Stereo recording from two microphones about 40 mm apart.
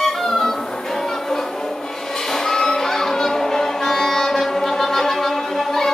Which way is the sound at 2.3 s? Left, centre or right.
Centre.